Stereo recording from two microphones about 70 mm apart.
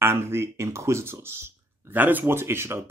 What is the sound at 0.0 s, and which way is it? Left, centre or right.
Speech, right.